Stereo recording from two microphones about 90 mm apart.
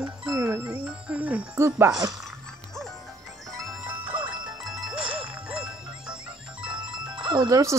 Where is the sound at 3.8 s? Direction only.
20° right (ahead or behind).